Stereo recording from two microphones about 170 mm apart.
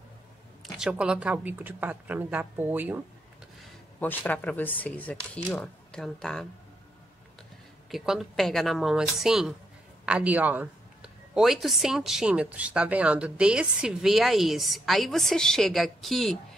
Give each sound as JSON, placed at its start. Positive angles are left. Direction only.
{"t": 0.7, "sound": "a woman's voice", "side_deg": -5}
{"t": 4.0, "sound": "speech", "side_deg": 10}
{"t": 7.9, "sound": "a woman's voice", "side_deg": 0}